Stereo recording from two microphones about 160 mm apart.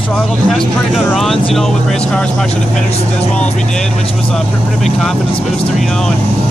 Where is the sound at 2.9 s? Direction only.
45° left (ahead or behind).